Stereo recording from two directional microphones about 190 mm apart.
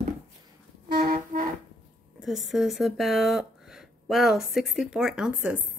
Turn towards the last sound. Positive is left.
turn(degrees=-5)  # may be behind; listen again after turning